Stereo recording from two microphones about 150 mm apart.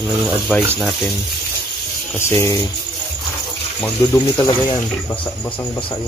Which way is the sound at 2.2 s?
20° left (ahead or behind).